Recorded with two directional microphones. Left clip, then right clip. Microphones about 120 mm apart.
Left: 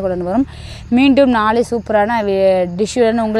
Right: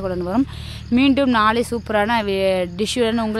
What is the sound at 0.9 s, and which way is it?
Speech, 30° left (ahead or behind).